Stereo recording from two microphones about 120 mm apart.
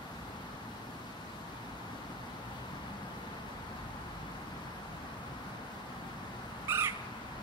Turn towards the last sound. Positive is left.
turn(degrees=-20)  # may be behind; listen again after turning